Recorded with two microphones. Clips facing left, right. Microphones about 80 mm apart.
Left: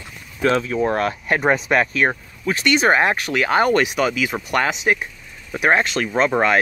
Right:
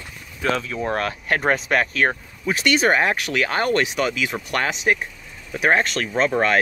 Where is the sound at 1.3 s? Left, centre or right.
Centre.